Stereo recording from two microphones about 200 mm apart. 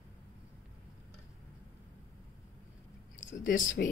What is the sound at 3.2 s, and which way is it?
Speech, 40° left (ahead or behind).